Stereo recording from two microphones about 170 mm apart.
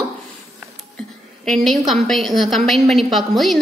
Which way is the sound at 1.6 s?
Centre (ahead or behind).